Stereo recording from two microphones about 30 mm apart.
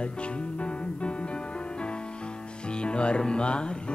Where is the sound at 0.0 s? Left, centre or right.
Left.